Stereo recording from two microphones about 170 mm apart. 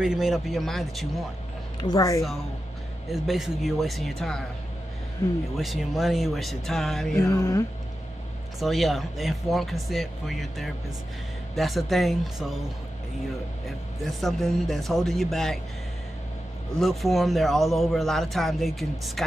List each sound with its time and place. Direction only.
0.0 s a man's voice: 5° right (ahead or behind)
1.8 s speech: 20° left (ahead or behind)
3.1 s a man's voice: centre (ahead or behind)
5.6 s a man's voice: centre (ahead or behind)
7.2 s speech: 20° left (ahead or behind)
8.5 s a man's voice: centre (ahead or behind)
13.7 s a man's voice: centre (ahead or behind)
16.8 s a man's voice: centre (ahead or behind)